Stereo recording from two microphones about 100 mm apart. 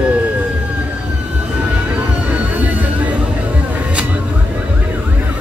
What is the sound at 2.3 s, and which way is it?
Music, 15° right (ahead or behind).